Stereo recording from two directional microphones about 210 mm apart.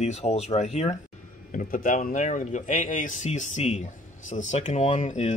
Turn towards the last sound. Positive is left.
turn(degrees=35)  # may be behind; listen again after turning